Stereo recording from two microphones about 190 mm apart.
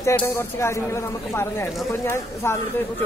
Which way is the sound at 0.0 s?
15° left (ahead or behind).